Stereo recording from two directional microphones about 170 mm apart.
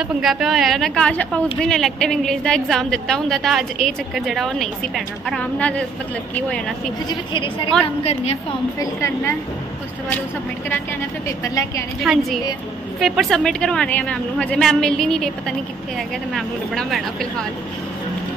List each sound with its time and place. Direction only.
0.0 s a woman's voice: centre (ahead or behind)
7.1 s a woman's voice: 30° left (ahead or behind)
8.7 s a woman's voice: 15° left (ahead or behind)
11.4 s a woman's voice: 20° left (ahead or behind)
12.0 s a woman's voice: centre (ahead or behind)